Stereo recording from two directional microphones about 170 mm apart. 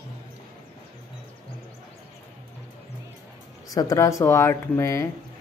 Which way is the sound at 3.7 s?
20° left (ahead or behind).